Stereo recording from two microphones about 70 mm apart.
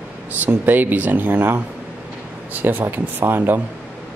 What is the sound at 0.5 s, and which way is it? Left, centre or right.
Speech, right.